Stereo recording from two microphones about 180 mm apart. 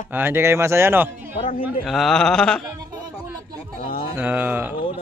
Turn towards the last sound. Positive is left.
turn(degrees=-10)  # may be behind; listen again after turning